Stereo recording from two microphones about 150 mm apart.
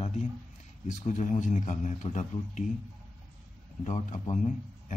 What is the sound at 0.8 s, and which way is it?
A man's voice, 55° left (ahead or behind).